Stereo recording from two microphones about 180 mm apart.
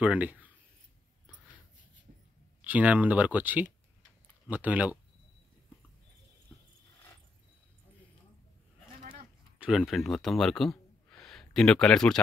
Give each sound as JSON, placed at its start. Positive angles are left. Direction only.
{"t": 0.0, "sound": "speech", "side_deg": -10}
{"t": 2.6, "sound": "speech", "side_deg": -10}
{"t": 9.6, "sound": "speech", "side_deg": 0}